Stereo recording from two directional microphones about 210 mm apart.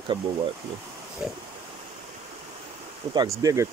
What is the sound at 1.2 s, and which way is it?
Speech, 5° right (ahead or behind).